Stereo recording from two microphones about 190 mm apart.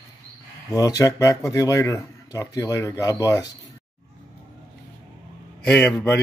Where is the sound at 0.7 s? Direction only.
20° left (ahead or behind).